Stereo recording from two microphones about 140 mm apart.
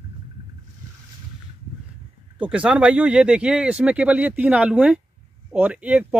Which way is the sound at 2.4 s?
10° right (ahead or behind).